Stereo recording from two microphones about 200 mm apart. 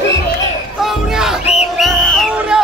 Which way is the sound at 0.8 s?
Centre (ahead or behind).